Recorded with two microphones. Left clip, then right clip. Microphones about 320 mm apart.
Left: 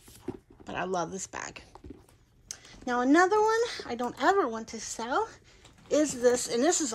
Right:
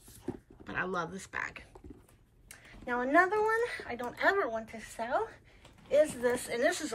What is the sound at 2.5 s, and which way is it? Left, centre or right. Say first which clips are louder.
A woman's voice: left 4 dB; centre.